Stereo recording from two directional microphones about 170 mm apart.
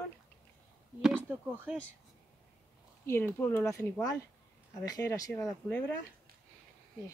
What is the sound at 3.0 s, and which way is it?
Speech, 15° left (ahead or behind).